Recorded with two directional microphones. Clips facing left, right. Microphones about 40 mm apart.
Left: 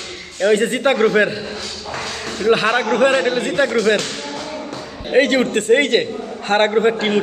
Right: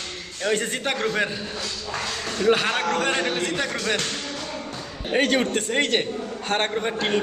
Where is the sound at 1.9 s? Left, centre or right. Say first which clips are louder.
Left 3 dB; centre.